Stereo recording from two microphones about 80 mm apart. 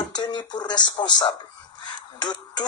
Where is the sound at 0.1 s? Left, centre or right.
Left.